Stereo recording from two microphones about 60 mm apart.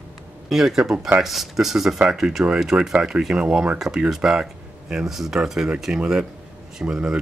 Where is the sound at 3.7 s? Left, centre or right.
Centre.